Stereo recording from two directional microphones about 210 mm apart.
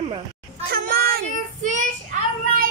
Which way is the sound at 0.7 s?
45° right (ahead or behind).